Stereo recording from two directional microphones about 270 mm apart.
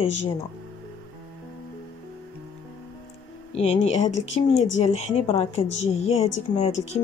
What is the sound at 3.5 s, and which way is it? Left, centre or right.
A woman's voice, left.